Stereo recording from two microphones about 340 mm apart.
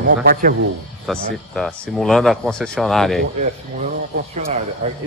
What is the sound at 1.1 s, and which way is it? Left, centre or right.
Speech, centre.